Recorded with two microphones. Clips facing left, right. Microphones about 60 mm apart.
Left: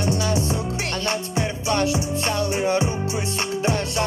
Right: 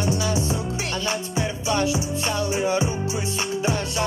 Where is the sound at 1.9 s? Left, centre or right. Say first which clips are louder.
Left 1 dB; left.